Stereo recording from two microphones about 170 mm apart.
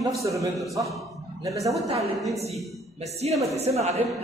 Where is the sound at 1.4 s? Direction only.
20° right (ahead or behind).